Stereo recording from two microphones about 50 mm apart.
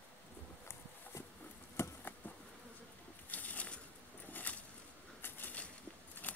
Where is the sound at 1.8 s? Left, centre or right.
Left.